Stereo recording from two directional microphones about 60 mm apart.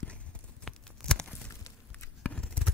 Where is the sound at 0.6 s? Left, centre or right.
Centre.